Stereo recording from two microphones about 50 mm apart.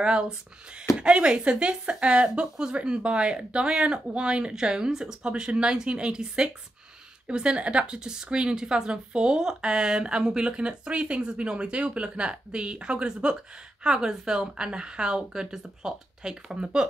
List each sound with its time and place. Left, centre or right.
0.0 s a woman's voice: centre